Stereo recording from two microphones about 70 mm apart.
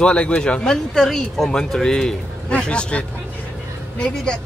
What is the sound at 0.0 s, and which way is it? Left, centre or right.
Speech, centre.